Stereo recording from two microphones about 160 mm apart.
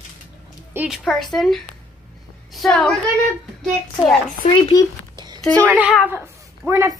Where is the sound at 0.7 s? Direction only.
5° right (ahead or behind).